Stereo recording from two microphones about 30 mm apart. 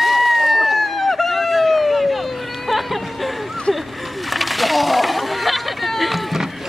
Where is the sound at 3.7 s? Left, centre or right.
Left.